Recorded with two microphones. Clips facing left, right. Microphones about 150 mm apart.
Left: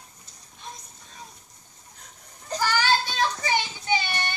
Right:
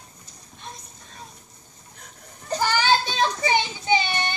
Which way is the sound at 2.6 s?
20° right (ahead or behind).